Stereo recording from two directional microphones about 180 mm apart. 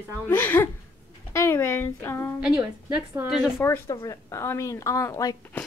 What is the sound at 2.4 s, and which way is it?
Speech, 5° right (ahead or behind).